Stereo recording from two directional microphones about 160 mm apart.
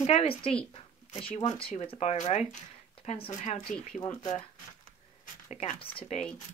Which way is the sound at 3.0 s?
35° left (ahead or behind).